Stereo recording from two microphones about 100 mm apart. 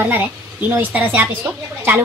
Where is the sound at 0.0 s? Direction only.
20° right (ahead or behind).